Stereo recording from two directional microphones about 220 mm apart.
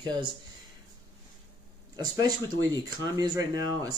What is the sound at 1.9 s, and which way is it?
Speech, 20° right (ahead or behind).